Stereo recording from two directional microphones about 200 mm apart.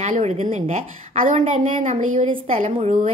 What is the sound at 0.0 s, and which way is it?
Speech, 35° right (ahead or behind).